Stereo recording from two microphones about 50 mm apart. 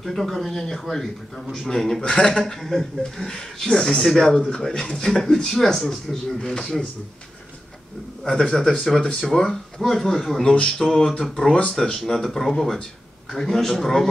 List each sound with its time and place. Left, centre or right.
0.0 s a man's voice: centre
2.6 s a man's voice: centre
8.3 s a man's voice: centre
10.4 s speech: left
11.1 s a man's voice: centre
11.3 s speech: centre
11.7 s a man's voice: centre